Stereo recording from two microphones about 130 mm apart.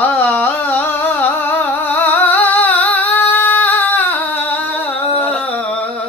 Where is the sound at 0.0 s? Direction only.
15° left (ahead or behind).